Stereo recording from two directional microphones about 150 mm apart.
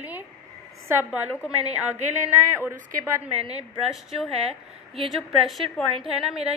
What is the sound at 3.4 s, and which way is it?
Speech, 45° right (ahead or behind).